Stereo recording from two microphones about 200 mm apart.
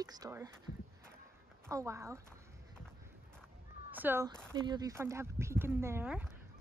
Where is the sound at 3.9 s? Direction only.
10° right (ahead or behind).